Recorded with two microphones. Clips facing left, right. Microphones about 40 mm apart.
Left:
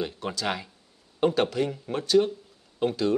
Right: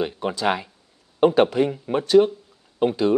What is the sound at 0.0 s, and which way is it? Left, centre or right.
Speech, right.